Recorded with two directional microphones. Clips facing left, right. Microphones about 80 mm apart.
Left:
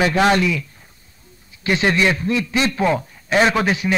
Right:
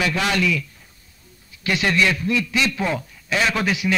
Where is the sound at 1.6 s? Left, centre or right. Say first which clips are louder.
Left 3 dB; left.